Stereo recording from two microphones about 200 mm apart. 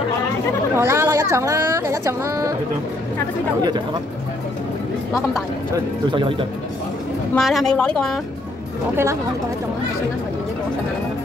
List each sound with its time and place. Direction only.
0.7 s speech: 15° right (ahead or behind)
6.1 s speech: 25° right (ahead or behind)
7.3 s a woman's voice: centre (ahead or behind)
8.9 s speech: 15° right (ahead or behind)